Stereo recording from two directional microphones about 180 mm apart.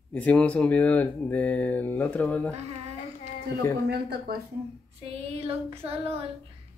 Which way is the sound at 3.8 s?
60° right (ahead or behind).